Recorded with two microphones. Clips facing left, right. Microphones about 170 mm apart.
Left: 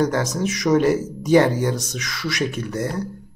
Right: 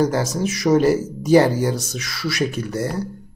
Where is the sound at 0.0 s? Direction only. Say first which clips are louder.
Right 1 dB; 30° right (ahead or behind).